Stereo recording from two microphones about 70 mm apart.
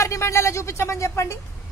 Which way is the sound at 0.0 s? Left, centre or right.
Left.